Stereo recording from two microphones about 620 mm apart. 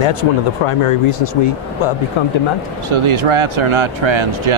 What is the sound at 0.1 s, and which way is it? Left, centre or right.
Speech, left.